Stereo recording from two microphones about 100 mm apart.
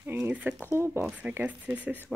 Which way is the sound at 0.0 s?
20° right (ahead or behind).